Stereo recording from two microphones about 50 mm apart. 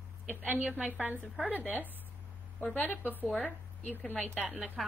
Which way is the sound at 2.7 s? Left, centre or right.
Left.